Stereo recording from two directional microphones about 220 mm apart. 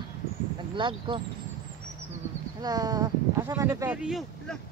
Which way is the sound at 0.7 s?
20° right (ahead or behind).